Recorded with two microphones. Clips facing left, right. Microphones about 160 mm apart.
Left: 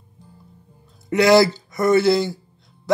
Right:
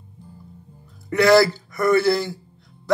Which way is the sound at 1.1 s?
20° left (ahead or behind).